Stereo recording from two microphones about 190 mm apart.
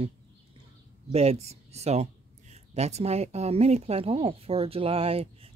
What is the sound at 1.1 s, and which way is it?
Speech, 35° right (ahead or behind).